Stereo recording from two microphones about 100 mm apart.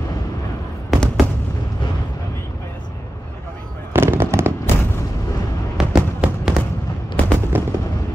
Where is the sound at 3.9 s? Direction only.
25° right (ahead or behind).